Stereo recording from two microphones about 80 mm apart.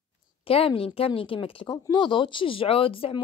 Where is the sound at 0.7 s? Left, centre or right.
Left.